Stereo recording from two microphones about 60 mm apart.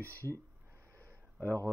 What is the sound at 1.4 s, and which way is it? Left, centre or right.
Speech, right.